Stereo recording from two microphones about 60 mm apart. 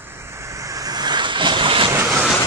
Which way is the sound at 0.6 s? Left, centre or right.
Right.